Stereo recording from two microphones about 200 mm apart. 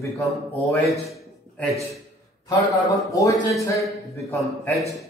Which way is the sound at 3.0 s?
15° left (ahead or behind).